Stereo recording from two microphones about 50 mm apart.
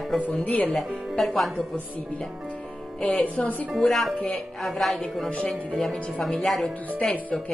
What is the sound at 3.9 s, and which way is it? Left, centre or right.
Speech, centre.